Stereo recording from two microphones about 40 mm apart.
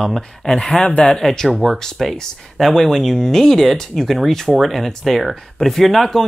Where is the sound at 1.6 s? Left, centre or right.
Centre.